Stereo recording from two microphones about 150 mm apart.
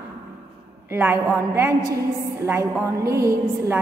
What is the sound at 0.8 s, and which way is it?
A woman's voice, 15° right (ahead or behind).